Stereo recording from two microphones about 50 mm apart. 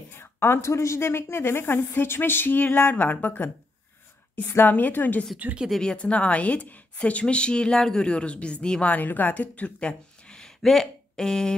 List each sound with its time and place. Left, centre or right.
0.2 s speech: left
5.4 s speech: right
5.8 s a woman's voice: centre
8.8 s speech: left
9.8 s a sound: centre